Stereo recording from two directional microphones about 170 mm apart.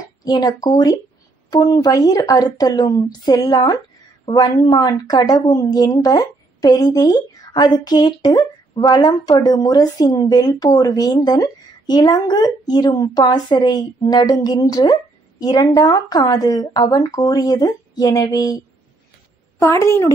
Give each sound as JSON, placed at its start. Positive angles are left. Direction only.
{"t": 0.2, "sound": "speech", "side_deg": 20}
{"t": 19.6, "sound": "a woman's voice", "side_deg": 15}